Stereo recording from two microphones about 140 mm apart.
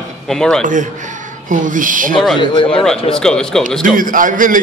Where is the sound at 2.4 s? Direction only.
35° left (ahead or behind).